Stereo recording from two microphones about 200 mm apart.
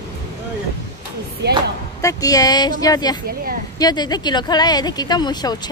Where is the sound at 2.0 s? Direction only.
15° left (ahead or behind).